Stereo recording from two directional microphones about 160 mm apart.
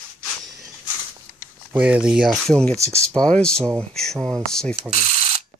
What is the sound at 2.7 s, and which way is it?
Speech, 20° right (ahead or behind).